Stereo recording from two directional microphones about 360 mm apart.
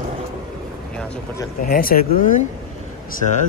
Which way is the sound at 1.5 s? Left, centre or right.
Left.